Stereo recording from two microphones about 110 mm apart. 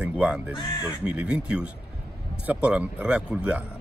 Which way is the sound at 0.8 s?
10° right (ahead or behind).